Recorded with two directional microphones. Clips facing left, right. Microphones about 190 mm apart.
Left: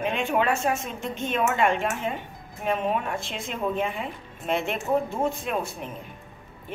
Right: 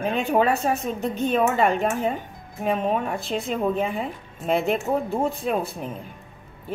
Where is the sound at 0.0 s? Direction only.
35° right (ahead or behind).